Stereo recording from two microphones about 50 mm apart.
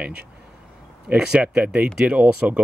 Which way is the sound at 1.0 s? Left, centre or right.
Centre.